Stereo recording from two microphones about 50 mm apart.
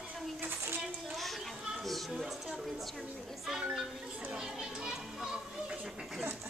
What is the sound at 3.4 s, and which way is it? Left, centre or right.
Children playing, centre.